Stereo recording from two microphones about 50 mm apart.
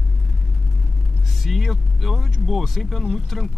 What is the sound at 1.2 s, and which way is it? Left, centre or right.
Speech, centre.